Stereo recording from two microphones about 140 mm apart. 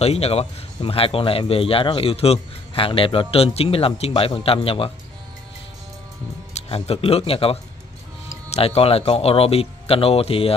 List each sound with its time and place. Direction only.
0.0 s a man's voice: 45° left (ahead or behind)
6.5 s a man's voice: 45° left (ahead or behind)